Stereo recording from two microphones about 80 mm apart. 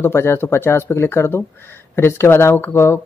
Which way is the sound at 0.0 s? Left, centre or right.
Left.